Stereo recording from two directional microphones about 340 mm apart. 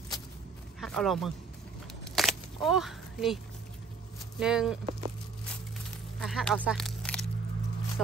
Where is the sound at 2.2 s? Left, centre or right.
Centre.